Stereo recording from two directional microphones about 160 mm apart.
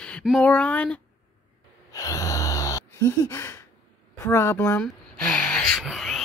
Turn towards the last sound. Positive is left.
turn(degrees=0)  # may be behind; listen again after turning